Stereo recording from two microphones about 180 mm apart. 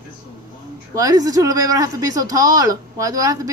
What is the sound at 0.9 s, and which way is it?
Speech, 20° right (ahead or behind).